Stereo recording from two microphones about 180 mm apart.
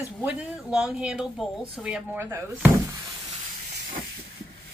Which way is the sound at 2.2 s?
15° right (ahead or behind).